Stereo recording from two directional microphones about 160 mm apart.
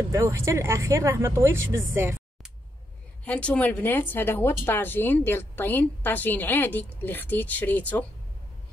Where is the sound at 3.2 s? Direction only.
5° left (ahead or behind).